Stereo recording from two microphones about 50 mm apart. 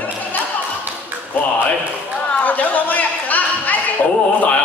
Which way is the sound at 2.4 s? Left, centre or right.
Left.